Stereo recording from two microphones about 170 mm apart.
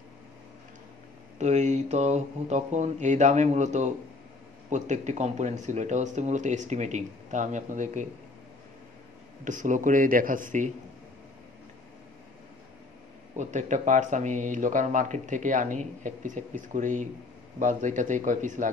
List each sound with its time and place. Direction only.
1.4 s speech: 45° right (ahead or behind)
9.4 s speech: 50° right (ahead or behind)
13.4 s speech: 45° right (ahead or behind)